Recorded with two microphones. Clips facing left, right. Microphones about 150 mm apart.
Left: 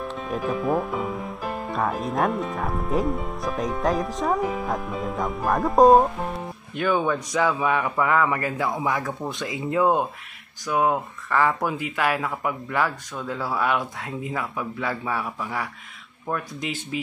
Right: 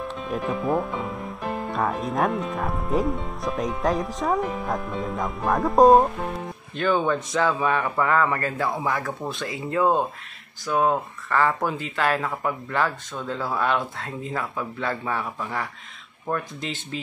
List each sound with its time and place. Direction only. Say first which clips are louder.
0.0 s speech: even; centre (ahead or behind)
6.7 s speech: even; 10° left (ahead or behind)